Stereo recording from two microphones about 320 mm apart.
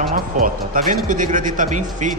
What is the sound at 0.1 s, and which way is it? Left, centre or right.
Speech, right.